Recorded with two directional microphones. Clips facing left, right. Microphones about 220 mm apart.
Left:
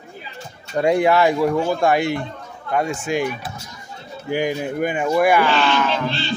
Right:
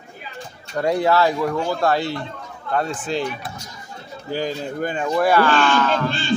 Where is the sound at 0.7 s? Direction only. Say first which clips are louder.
Left 2 dB; 15° left (ahead or behind).